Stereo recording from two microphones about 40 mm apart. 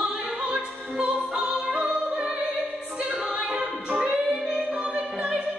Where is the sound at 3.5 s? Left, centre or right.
Right.